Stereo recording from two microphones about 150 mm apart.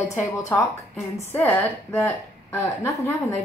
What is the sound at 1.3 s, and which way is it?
A woman's voice, 10° left (ahead or behind).